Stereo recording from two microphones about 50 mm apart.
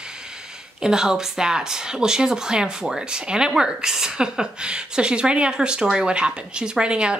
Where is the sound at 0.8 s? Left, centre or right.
Centre.